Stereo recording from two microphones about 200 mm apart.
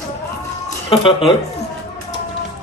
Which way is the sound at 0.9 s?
25° left (ahead or behind).